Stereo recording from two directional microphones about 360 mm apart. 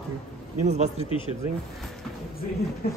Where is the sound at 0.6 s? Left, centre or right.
Centre.